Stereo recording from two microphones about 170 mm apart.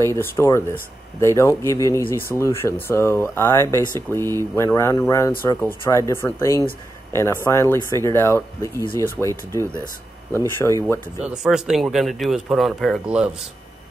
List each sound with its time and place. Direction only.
0.0 s speech: 15° left (ahead or behind)
9.2 s speech: 5° right (ahead or behind)
10.6 s speech: 15° left (ahead or behind)
11.1 s speech: 5° right (ahead or behind)